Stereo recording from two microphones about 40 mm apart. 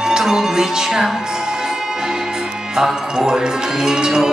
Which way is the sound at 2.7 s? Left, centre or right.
Centre.